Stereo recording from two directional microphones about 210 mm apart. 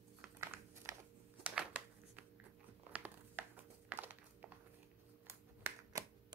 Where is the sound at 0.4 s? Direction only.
15° right (ahead or behind).